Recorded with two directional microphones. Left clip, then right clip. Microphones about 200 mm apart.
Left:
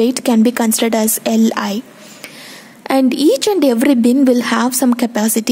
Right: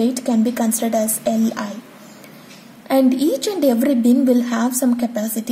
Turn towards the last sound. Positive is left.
turn(degrees=30)  # may be behind; listen again after turning